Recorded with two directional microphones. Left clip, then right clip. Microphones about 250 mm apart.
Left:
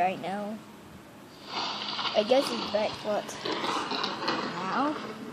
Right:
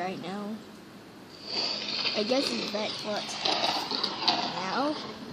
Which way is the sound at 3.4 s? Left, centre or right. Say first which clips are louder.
Right 4 dB; right.